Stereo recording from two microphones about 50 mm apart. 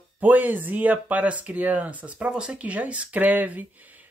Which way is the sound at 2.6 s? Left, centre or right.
Right.